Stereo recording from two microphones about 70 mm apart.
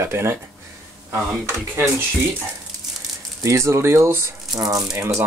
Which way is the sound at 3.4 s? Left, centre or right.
Right.